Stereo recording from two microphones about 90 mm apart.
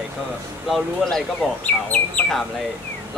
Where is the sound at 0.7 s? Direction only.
Centre (ahead or behind).